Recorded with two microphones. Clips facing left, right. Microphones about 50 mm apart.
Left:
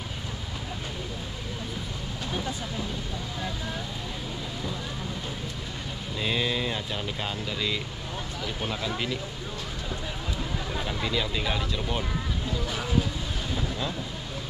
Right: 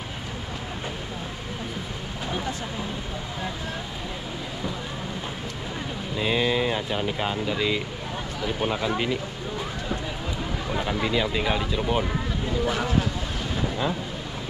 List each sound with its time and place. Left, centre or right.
6.1 s speech: centre
10.7 s speech: centre